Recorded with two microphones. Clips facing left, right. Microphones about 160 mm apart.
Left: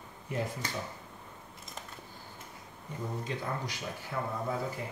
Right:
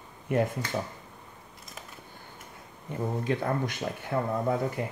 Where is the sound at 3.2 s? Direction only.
60° right (ahead or behind).